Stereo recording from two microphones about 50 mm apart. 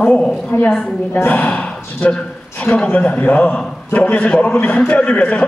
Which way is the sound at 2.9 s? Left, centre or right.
Left.